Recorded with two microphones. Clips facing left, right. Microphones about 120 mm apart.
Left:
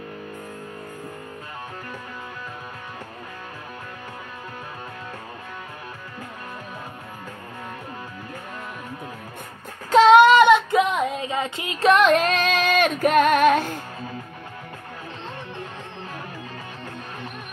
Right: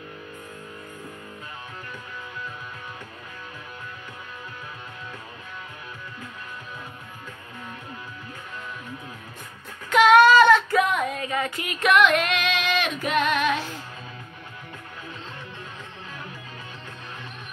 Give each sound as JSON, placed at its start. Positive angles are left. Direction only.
{"t": 9.8, "sound": "child singing", "side_deg": 30}